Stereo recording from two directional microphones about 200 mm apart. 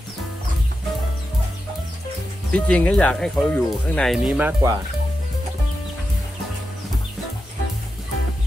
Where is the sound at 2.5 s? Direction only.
5° left (ahead or behind); by 4.7 s 15° right (ahead or behind).